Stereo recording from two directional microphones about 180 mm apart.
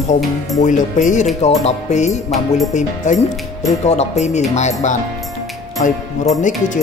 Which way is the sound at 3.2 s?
20° left (ahead or behind).